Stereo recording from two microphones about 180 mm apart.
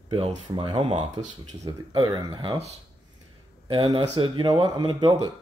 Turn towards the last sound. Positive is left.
turn(degrees=-25)  # may be behind; listen again after turning